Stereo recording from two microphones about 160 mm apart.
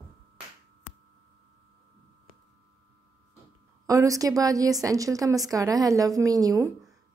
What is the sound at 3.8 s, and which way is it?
A woman's voice, 20° right (ahead or behind).